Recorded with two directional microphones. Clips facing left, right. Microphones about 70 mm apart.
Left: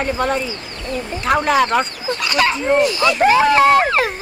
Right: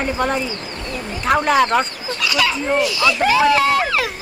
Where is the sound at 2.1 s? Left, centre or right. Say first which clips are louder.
Left 3 dB; left.